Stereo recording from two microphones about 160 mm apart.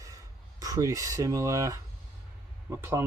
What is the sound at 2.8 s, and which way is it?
Speech, 15° right (ahead or behind).